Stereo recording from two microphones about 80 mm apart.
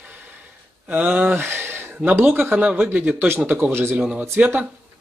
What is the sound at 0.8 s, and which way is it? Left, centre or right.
Speech, centre.